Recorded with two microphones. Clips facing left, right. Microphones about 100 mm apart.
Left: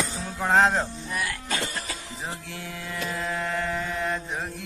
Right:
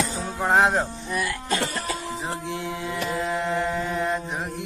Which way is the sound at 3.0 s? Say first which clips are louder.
Right 3 dB; 20° right (ahead or behind).